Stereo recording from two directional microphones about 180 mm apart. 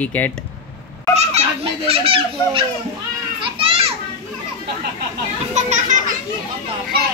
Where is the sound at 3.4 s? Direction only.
30° right (ahead or behind).